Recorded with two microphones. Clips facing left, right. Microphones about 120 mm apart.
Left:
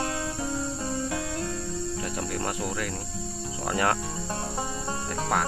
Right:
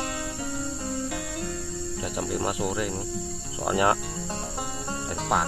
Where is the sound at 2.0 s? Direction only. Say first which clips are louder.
Right 6 dB; 15° right (ahead or behind).